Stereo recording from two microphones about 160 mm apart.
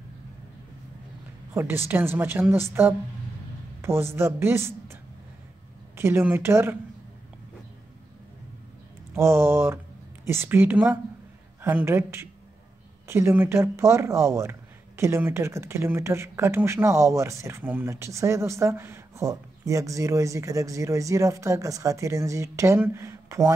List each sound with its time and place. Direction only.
1.5 s speech: 15° right (ahead or behind)
5.9 s speech: 15° right (ahead or behind)
9.1 s speech: 15° right (ahead or behind)